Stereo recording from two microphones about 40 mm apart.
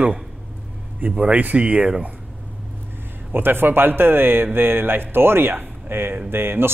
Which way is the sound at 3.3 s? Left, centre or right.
Right.